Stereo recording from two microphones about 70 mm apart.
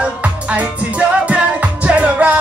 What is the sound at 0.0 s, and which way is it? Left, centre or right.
Music, centre.